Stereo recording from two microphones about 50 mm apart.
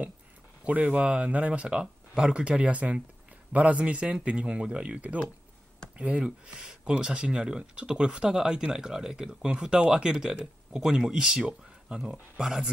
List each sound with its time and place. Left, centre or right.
0.7 s speech: right
1.7 s speech: centre